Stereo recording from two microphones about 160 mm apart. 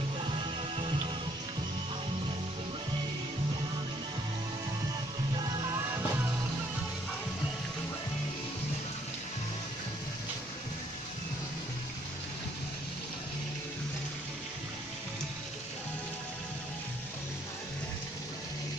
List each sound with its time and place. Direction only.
0.2 s music: 30° right (ahead or behind)
5.4 s music: 20° right (ahead or behind)